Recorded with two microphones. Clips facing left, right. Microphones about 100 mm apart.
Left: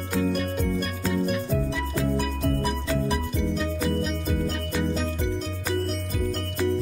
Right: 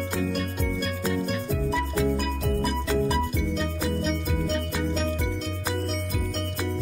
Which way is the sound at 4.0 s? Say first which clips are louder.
Even; centre (ahead or behind).